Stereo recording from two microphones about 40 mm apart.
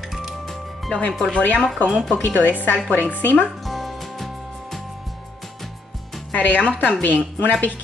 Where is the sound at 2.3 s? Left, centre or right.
Left.